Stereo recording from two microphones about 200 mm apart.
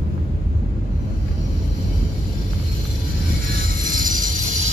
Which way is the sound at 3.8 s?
45° right (ahead or behind).